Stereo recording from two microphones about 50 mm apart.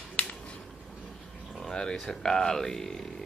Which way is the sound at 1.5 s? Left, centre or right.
Centre.